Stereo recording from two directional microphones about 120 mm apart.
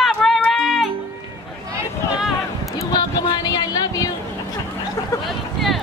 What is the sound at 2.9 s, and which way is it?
Vehicle, 35° left (ahead or behind).